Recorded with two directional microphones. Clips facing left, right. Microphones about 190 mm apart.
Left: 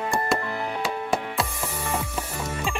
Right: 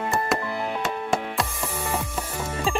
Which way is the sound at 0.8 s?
5° left (ahead or behind).